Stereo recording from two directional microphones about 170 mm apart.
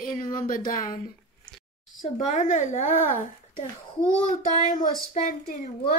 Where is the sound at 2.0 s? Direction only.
45° left (ahead or behind).